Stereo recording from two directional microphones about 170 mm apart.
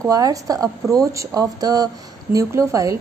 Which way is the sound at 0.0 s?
20° right (ahead or behind).